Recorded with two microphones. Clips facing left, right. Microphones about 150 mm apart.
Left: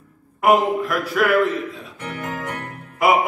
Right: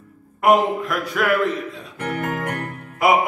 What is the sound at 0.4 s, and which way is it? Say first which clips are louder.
Music: even; centre (ahead or behind).